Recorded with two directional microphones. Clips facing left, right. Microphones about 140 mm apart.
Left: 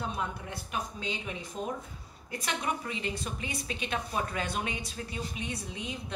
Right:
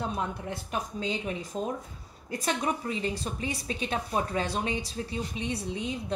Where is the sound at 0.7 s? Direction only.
40° right (ahead or behind).